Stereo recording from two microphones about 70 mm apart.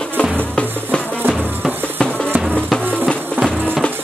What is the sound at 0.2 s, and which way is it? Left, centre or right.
Music, centre.